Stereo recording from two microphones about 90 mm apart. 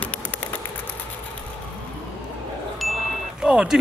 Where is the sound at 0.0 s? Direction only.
20° left (ahead or behind).